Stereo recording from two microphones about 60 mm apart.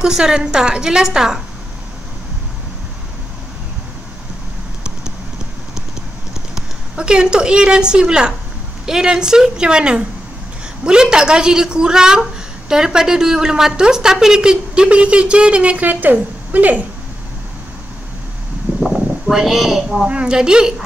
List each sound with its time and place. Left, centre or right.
0.0 s a woman's voice: centre
7.0 s a woman's voice: centre
18.8 s a sound: centre
20.1 s a woman's voice: centre